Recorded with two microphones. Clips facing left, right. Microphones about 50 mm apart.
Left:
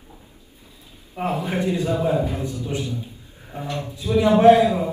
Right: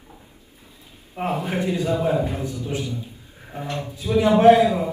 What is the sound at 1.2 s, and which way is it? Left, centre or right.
Speech, right.